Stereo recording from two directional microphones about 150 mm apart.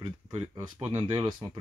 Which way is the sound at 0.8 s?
40° right (ahead or behind).